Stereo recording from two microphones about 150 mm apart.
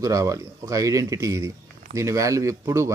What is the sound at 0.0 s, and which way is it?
Speech, 20° right (ahead or behind).